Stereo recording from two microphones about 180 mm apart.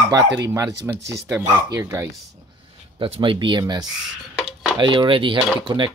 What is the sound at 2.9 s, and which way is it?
Speech, 30° right (ahead or behind).